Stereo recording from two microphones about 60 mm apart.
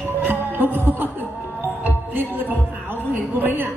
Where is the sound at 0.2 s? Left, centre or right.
Right.